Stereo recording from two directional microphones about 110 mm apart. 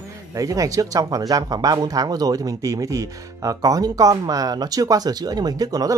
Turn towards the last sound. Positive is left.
turn(degrees=-35)  # may be behind; listen again after turning